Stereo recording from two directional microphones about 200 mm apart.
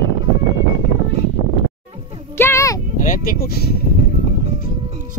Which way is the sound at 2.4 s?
15° left (ahead or behind).